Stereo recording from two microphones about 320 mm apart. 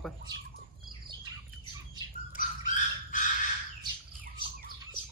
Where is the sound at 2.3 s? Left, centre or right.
Left.